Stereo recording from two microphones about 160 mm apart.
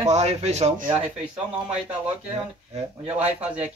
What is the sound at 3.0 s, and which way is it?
Speech, 10° right (ahead or behind).